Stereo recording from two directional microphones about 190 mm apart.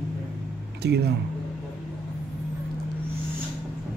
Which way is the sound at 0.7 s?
60° right (ahead or behind).